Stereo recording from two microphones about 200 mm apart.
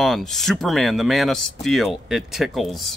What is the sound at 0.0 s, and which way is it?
Speech, centre (ahead or behind).